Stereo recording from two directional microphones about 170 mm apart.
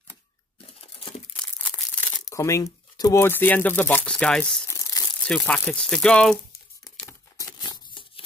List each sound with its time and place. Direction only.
0.7 s crumpling: 35° left (ahead or behind)
1.3 s a sound: 5° left (ahead or behind)
2.2 s speech: 20° left (ahead or behind)
4.6 s crumpling: 15° left (ahead or behind)
5.2 s speech: 5° left (ahead or behind)
7.1 s a sound: 20° left (ahead or behind)